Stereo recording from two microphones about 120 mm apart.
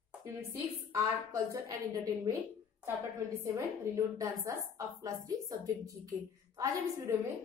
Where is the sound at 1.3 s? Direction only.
25° right (ahead or behind).